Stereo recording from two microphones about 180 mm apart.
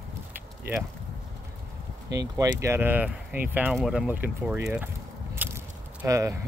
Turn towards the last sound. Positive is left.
turn(degrees=-15)  # may be behind; listen again after turning